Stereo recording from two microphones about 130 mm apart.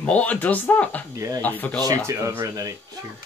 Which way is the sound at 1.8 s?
25° right (ahead or behind).